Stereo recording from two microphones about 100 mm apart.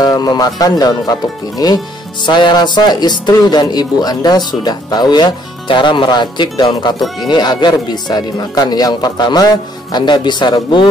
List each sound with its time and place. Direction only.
0.0 s speech: 40° left (ahead or behind)